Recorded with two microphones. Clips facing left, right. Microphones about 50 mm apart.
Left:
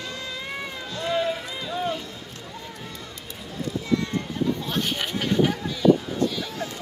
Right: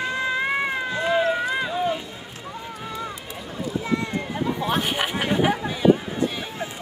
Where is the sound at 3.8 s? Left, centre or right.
Right.